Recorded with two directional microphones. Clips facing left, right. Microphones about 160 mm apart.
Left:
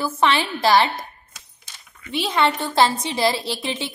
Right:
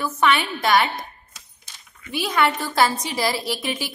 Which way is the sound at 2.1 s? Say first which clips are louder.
Left 1 dB; 25° left (ahead or behind).